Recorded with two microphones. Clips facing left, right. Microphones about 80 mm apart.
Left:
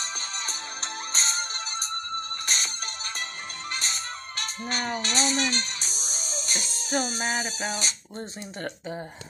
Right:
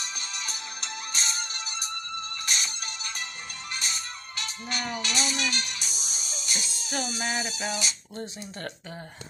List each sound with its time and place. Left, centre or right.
1.1 s music: left
2.4 s music: left
3.7 s music: left
8.2 s speech: centre